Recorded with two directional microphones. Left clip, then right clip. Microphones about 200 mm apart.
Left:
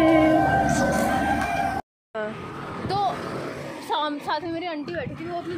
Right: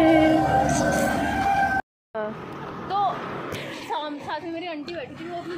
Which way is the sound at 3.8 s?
50° left (ahead or behind).